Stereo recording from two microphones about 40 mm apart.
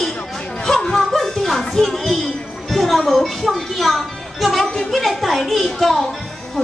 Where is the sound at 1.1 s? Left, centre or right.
Centre.